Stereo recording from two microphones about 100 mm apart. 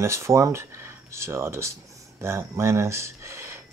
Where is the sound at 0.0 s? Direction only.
30° right (ahead or behind).